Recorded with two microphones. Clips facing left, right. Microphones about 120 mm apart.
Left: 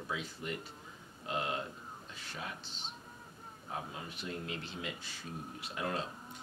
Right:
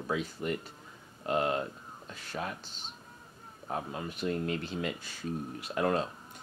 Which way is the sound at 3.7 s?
50° right (ahead or behind).